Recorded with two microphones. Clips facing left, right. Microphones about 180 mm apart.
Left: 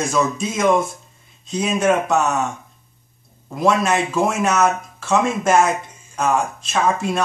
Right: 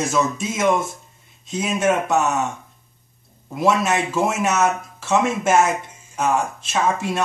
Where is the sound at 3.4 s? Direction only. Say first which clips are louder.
Left 1 dB; 5° right (ahead or behind).